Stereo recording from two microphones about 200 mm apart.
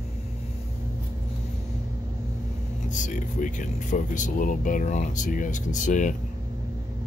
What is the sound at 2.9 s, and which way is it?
Speech, 40° left (ahead or behind).